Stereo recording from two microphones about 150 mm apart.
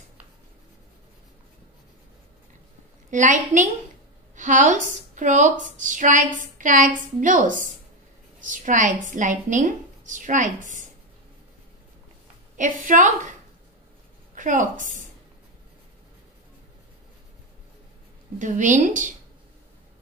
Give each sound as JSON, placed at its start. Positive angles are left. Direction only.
{"t": 3.1, "sound": "a woman's voice", "side_deg": -55}
{"t": 12.5, "sound": "a woman's voice", "side_deg": -60}
{"t": 14.3, "sound": "a woman's voice", "side_deg": -60}
{"t": 18.4, "sound": "a woman's voice", "side_deg": -55}